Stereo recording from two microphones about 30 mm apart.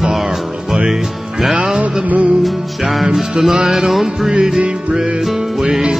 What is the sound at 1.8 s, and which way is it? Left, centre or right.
Music, right.